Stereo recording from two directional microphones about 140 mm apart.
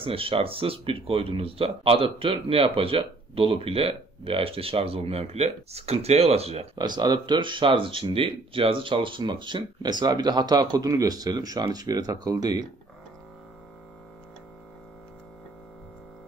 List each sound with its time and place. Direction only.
0.0 s speech: 40° right (ahead or behind)
6.8 s speech: 30° right (ahead or behind)